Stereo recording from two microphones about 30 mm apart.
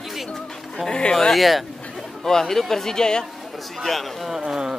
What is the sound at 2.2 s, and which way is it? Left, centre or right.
Speech, centre.